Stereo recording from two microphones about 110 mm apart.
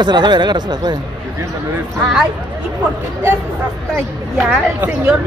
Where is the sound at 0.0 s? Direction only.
40° right (ahead or behind).